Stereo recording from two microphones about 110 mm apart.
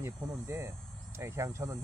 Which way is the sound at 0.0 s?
25° right (ahead or behind).